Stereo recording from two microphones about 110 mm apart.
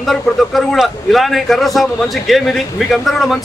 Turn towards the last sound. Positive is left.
turn(degrees=0)  # may be behind; listen again after turning